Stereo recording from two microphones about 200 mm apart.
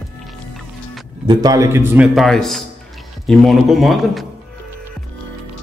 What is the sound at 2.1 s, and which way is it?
Speech, centre (ahead or behind).